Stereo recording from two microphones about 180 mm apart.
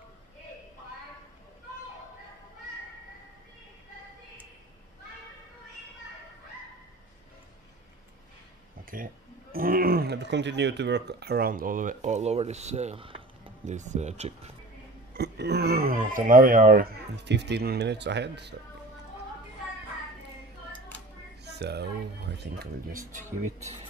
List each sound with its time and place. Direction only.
8.8 s speech: 50° right (ahead or behind); by 13.5 s 30° right (ahead or behind)
13.7 s speech: 40° right (ahead or behind)
15.1 s speech: 65° right (ahead or behind)
21.5 s speech: 65° right (ahead or behind)
22.9 s speech: 45° right (ahead or behind)